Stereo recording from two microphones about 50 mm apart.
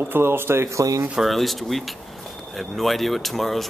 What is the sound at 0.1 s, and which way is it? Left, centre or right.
Speech, right.